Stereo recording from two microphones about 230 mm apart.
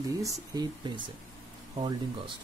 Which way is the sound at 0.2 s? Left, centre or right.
Centre.